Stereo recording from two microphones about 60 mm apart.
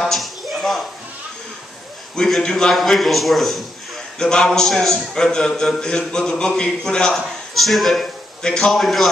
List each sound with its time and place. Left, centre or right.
0.0 s a sound: centre
2.1 s a man's voice: centre
4.2 s a man's voice: centre